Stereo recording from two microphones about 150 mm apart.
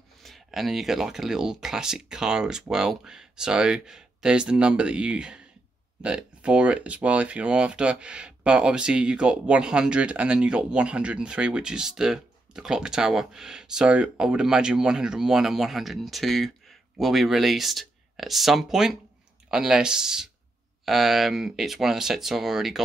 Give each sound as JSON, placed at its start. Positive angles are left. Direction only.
{"t": 0.2, "sound": "speech", "side_deg": 0}